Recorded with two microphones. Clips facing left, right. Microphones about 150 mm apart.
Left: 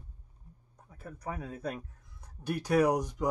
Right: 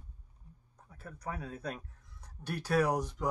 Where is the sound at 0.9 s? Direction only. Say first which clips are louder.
Left 2 dB; 10° left (ahead or behind).